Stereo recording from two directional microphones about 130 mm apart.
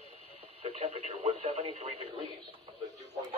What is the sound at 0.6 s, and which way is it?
Radio, 50° right (ahead or behind).